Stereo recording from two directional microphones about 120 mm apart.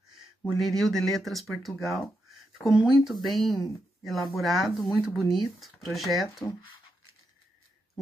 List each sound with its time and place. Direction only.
0.6 s speech: centre (ahead or behind)